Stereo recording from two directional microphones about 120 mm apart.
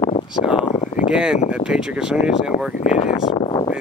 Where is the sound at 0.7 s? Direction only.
90° left.